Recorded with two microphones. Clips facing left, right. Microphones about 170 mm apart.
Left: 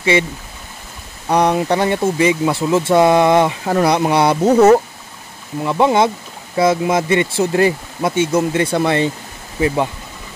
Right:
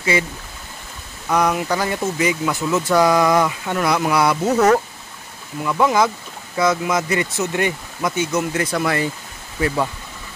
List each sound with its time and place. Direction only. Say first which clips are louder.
1.3 s speech: left 4 dB; 30° left (ahead or behind)